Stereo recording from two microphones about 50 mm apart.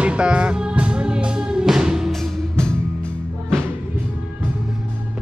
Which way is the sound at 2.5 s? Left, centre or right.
Centre.